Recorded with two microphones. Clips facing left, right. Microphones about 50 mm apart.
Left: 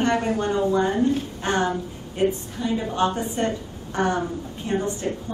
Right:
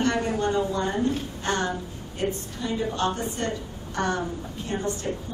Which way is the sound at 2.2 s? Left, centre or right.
Centre.